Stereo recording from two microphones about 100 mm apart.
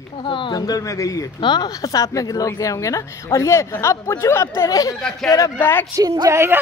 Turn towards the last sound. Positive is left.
turn(degrees=-25)  # may be behind; listen again after turning